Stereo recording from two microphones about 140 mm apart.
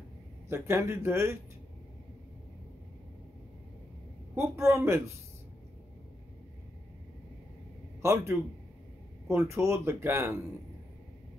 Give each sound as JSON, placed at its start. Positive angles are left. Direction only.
{"t": 0.5, "sound": "speech", "side_deg": -20}
{"t": 4.4, "sound": "speech", "side_deg": -20}
{"t": 8.0, "sound": "speech", "side_deg": -20}